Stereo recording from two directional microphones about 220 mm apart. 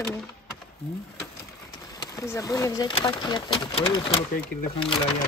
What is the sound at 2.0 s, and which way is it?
Speech, 15° left (ahead or behind).